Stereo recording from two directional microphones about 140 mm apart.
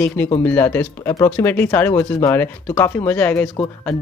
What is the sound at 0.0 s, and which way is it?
Speech, 15° left (ahead or behind).